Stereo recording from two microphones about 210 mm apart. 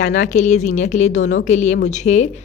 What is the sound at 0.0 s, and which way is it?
Speech, 35° left (ahead or behind).